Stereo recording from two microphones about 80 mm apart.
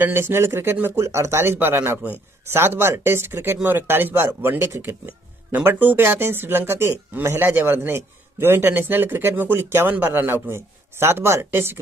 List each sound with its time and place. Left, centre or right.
0.0 s a man's voice: right